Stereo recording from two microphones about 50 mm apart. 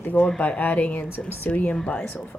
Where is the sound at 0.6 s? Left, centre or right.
Left.